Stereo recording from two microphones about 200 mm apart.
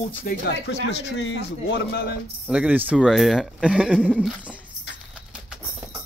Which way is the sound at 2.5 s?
5° right (ahead or behind).